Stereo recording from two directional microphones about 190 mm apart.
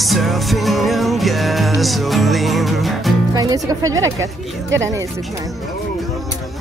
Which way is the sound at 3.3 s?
20° right (ahead or behind).